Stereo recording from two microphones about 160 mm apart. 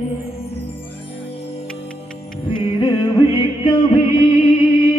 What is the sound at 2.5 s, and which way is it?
Music, 25° left (ahead or behind).